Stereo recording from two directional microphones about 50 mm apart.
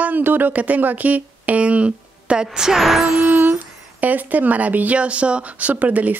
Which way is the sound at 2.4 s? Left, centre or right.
Centre.